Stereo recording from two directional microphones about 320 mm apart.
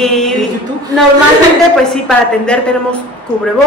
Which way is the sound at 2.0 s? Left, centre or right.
Centre.